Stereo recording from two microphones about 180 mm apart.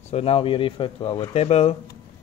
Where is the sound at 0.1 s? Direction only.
35° left (ahead or behind).